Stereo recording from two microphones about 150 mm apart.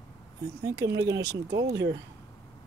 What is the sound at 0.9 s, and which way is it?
Speech, 90° right.